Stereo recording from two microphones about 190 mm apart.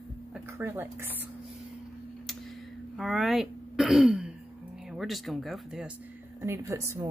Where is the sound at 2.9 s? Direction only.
Centre (ahead or behind).